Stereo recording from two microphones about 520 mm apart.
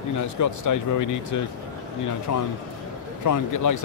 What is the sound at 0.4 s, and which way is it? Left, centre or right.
A man's voice, left.